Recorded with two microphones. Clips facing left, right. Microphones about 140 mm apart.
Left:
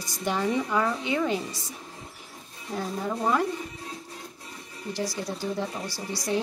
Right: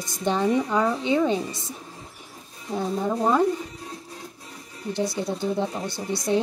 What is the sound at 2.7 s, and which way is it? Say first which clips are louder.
Speech: right 5 dB; 20° right (ahead or behind).